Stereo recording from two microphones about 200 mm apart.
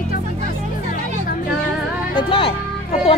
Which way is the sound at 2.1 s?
25° left (ahead or behind).